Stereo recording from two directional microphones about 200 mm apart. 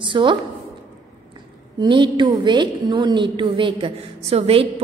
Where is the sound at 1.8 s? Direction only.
25° right (ahead or behind).